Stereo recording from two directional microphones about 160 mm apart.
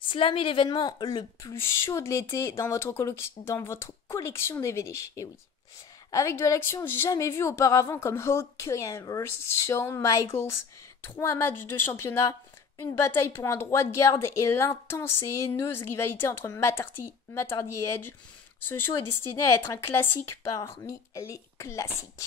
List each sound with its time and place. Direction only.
0.0 s a woman's voice: 30° left (ahead or behind)
1.5 s a woman's voice: 15° left (ahead or behind)
19.6 s a woman's voice: 15° left (ahead or behind)